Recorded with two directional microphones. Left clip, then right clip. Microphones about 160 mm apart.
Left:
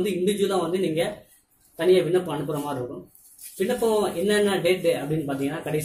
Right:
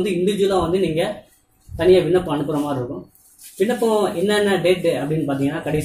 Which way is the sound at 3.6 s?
10° left (ahead or behind).